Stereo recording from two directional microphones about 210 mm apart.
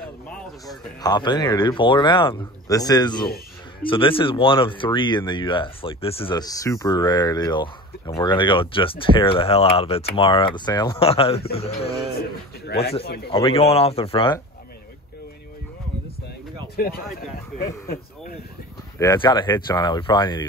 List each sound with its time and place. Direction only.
1.0 s speech: 20° left (ahead or behind)
12.6 s speech: 50° left (ahead or behind)
13.3 s speech: 25° left (ahead or behind)
18.9 s speech: 15° left (ahead or behind)